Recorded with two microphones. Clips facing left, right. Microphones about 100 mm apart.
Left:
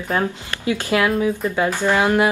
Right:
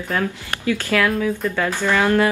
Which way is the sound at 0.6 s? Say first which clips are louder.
Left 1 dB; 20° left (ahead or behind).